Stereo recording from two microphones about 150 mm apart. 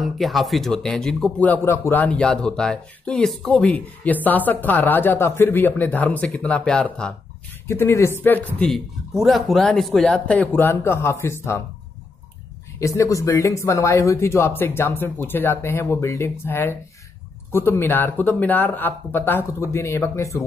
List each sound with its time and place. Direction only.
0.0 s speech: centre (ahead or behind)
8.5 s speech: centre (ahead or behind); by 11.6 s 20° left (ahead or behind)
12.8 s speech: 20° left (ahead or behind)